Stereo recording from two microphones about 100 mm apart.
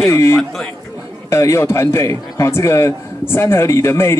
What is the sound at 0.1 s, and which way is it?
Speech, 25° left (ahead or behind).